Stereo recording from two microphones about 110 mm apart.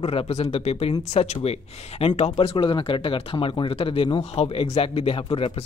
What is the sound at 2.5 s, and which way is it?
Speech, 50° left (ahead or behind).